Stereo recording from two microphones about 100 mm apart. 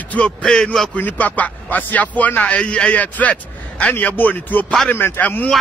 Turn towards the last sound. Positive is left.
turn(degrees=15)  # may be behind; listen again after turning